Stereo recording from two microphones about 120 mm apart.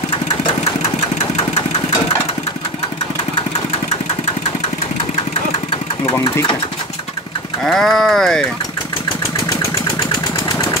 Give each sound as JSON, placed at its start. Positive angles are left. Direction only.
{"t": 6.0, "sound": "speech", "side_deg": 25}
{"t": 7.6, "sound": "speech", "side_deg": 5}